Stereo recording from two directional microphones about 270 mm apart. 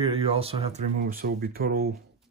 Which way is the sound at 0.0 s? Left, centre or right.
Right.